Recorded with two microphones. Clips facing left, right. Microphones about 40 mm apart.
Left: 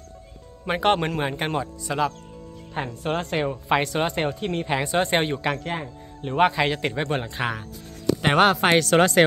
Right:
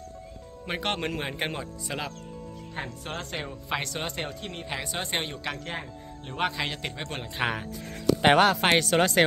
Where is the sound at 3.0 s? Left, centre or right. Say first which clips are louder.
Left 9 dB; left.